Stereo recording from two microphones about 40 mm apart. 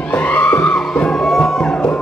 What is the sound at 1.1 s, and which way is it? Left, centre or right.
Music, centre.